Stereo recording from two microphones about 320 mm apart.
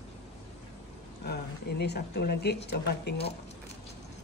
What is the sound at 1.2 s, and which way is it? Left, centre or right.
A woman's voice, left.